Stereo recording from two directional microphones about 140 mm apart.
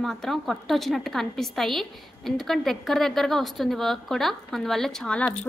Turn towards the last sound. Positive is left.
turn(degrees=5)  # may be behind; listen again after turning